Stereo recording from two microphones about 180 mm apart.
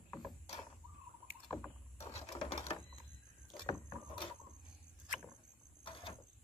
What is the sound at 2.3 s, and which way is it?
Sewing machine, 30° left (ahead or behind).